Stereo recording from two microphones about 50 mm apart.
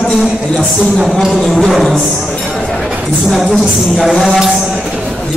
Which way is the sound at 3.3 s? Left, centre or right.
Centre.